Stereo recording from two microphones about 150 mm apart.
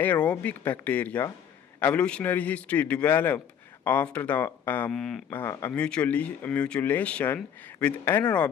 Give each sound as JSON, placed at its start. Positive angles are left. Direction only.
{"t": 0.0, "sound": "a man's voice", "side_deg": 10}
{"t": 5.4, "sound": "a man's voice", "side_deg": 15}
{"t": 5.7, "sound": "a man's voice", "side_deg": 5}